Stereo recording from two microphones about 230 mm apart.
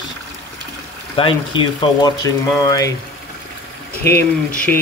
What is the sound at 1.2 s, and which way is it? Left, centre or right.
Speech, left.